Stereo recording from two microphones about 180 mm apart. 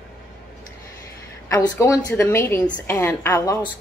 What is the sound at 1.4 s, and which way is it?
A woman's voice, 15° left (ahead or behind).